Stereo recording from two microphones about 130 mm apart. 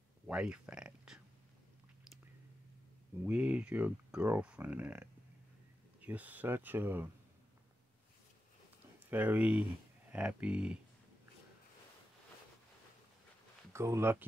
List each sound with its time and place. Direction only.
0.3 s speech: 10° right (ahead or behind)
3.3 s speech: 10° right (ahead or behind)
9.1 s speech: 15° right (ahead or behind)
13.7 s speech: 20° right (ahead or behind)